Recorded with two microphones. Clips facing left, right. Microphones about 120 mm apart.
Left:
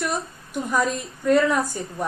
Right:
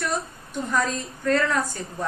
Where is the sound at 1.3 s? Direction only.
25° left (ahead or behind).